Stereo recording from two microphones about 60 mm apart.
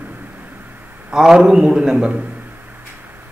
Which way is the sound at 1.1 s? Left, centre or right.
Centre.